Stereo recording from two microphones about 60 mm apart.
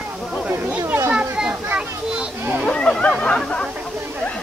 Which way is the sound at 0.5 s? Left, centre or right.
Right.